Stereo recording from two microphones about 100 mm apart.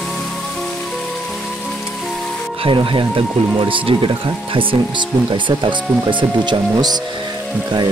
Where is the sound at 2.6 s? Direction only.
60° right (ahead or behind).